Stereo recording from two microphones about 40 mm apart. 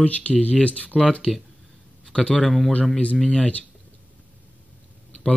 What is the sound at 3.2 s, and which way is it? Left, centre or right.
Speech, centre.